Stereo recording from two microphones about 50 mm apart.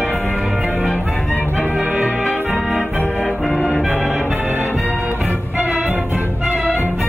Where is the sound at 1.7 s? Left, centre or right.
Right.